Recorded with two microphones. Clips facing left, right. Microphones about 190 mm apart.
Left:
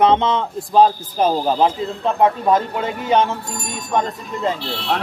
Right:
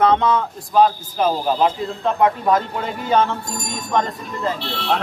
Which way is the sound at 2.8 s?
20° left (ahead or behind).